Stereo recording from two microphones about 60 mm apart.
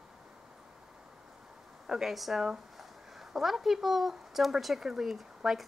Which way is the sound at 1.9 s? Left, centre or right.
Centre.